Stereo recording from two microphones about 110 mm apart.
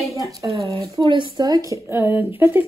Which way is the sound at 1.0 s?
50° right (ahead or behind).